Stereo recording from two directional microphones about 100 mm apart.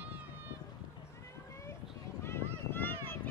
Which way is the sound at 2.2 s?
25° left (ahead or behind).